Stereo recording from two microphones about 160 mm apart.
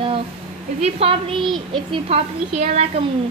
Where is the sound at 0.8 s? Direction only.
40° right (ahead or behind).